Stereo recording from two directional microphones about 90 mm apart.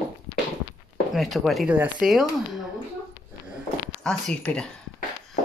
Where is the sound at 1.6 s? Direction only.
20° right (ahead or behind).